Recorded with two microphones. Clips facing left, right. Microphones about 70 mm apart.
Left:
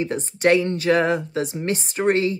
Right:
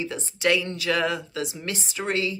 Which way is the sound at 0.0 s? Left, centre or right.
Left.